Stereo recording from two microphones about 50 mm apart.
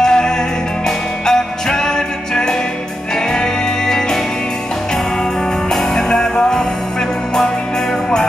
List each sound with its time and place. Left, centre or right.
0.0 s music: centre
3.3 s music: centre
5.7 s music: centre